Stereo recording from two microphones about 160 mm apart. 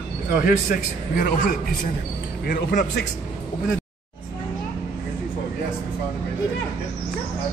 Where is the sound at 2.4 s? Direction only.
65° left (ahead or behind).